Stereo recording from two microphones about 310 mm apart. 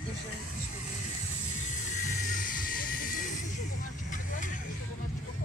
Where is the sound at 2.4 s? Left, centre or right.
Left.